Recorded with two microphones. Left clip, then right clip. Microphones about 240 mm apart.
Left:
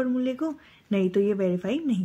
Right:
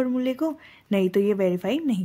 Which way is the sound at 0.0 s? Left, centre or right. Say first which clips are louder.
Right 2 dB; right.